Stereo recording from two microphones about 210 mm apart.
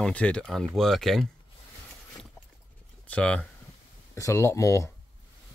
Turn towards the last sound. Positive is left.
turn(degrees=15)  # may be behind; listen again after turning